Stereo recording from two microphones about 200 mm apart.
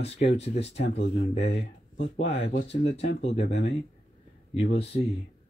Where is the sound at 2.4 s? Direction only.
30° left (ahead or behind).